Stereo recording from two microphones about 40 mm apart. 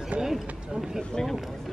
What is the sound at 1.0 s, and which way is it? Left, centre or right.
Speech, centre.